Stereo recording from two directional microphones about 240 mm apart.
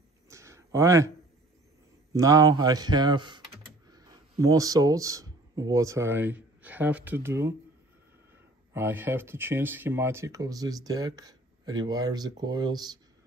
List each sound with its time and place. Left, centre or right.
0.3 s a sound: centre
2.1 s speech: centre
8.7 s speech: centre